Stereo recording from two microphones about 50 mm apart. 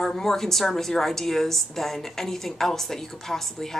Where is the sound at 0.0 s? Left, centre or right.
Centre.